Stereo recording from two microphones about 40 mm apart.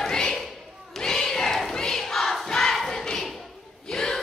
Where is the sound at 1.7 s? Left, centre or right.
Centre.